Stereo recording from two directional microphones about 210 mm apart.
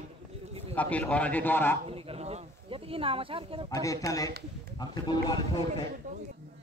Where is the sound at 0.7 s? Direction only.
5° left (ahead or behind).